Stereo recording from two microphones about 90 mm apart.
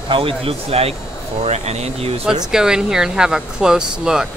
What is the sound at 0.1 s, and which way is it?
Speech, 85° right.